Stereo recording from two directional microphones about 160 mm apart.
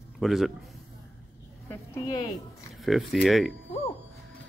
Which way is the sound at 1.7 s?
20° left (ahead or behind).